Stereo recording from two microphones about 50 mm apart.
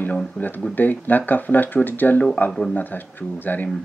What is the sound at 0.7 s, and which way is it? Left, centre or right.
Speech, left.